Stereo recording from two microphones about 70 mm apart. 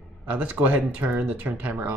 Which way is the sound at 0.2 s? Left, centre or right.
Right.